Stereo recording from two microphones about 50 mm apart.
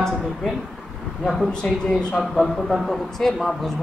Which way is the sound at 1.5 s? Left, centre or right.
Centre.